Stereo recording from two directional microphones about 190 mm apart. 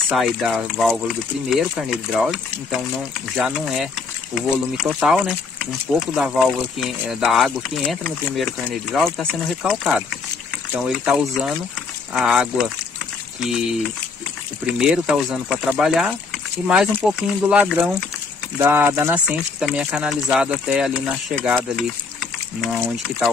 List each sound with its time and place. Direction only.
0.1 s speech: centre (ahead or behind)